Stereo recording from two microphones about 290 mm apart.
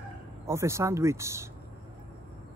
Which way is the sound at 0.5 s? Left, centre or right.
Centre.